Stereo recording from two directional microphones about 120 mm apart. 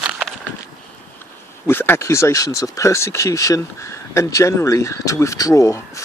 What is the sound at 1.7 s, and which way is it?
Speech, 20° left (ahead or behind).